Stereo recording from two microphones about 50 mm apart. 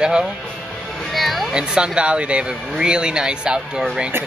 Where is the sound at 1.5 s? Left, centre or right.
Centre.